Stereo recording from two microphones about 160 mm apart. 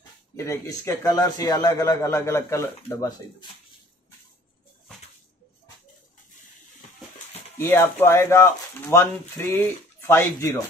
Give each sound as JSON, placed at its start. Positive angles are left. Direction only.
{"t": 0.4, "sound": "a man's voice", "side_deg": 20}
{"t": 7.5, "sound": "speech", "side_deg": 15}